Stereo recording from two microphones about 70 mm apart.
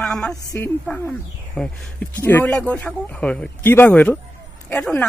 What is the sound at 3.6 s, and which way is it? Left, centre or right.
Speech, left.